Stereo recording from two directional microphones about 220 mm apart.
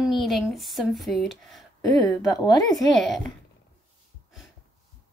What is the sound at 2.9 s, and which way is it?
Speech, centre (ahead or behind).